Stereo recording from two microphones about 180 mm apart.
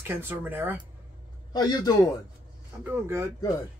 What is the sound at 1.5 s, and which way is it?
Speech, 20° left (ahead or behind).